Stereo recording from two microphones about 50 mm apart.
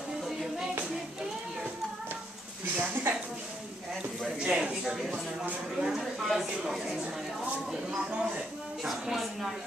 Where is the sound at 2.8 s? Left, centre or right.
Right.